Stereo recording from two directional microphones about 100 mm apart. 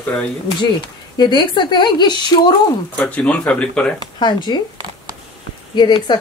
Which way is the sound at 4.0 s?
45° left (ahead or behind).